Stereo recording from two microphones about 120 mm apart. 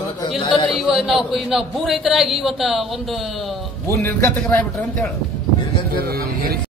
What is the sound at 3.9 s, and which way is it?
Speech, 20° left (ahead or behind).